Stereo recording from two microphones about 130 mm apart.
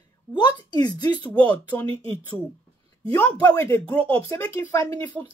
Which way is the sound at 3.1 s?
15° left (ahead or behind).